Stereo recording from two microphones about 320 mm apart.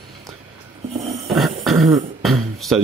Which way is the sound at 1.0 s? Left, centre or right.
Centre.